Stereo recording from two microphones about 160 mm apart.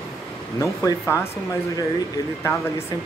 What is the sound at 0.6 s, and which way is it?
Speech, 20° left (ahead or behind).